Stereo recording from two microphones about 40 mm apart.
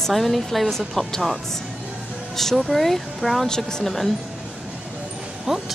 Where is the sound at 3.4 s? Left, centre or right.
Centre.